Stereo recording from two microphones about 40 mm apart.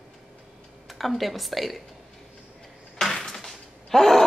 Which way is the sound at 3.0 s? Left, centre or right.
Centre.